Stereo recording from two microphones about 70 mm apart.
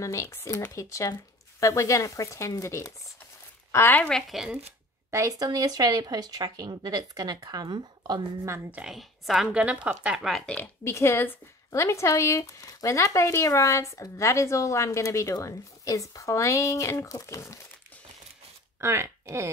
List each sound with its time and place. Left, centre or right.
0.0 s speech: left
3.7 s speech: left
4.3 s a woman's voice: centre
5.1 s speech: right
8.8 s a woman's voice: centre
9.5 s a woman's voice: centre
10.4 s speech: centre
10.8 s speech: left
18.8 s speech: right